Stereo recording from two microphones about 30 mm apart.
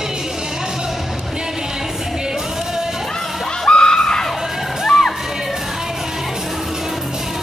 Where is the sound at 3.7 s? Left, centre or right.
Left.